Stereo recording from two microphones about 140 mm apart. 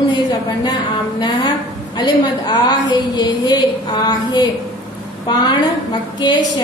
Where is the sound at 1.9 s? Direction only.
30° left (ahead or behind).